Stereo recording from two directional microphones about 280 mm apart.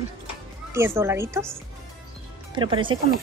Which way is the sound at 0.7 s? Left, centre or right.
Centre.